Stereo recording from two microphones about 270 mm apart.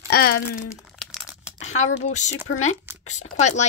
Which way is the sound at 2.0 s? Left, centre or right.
Left.